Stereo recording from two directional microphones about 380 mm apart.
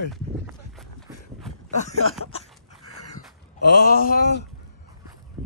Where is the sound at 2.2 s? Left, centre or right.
Centre.